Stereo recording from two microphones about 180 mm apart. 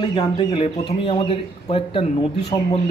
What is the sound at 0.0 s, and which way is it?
A man's voice, 30° left (ahead or behind).